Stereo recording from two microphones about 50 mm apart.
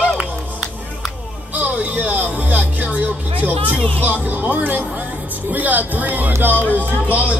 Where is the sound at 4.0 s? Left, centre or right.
Right.